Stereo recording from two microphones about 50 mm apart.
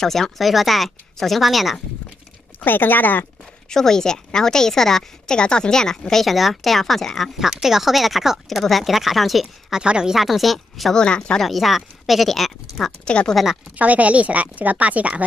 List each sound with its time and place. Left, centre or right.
0.0 s speech: centre
2.6 s speech: left
3.7 s a woman's voice: centre
6.2 s speech: centre
7.3 s speech: centre
9.8 s speech: centre
10.1 s speech: centre
11.0 s speech: centre
11.4 s speech: centre
13.0 s speech: left
13.7 s a woman's voice: right